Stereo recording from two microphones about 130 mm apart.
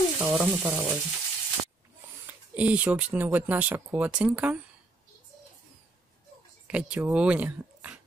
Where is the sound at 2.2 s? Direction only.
10° right (ahead or behind).